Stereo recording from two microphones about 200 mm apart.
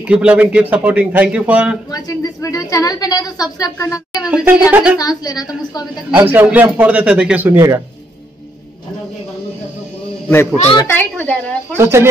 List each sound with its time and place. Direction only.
0.0 s a man's voice: 5° right (ahead or behind)
1.9 s a woman's voice: 20° left (ahead or behind)
4.2 s a man's voice: 5° right (ahead or behind)
4.9 s a woman's voice: 20° left (ahead or behind)
6.1 s a man's voice: 10° right (ahead or behind)
10.2 s a woman's voice: 10° left (ahead or behind)
11.7 s a man's voice: 10° right (ahead or behind)